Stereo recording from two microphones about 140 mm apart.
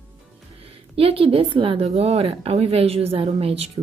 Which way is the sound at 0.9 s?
45° right (ahead or behind).